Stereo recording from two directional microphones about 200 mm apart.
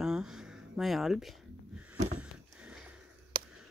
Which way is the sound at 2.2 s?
5° right (ahead or behind).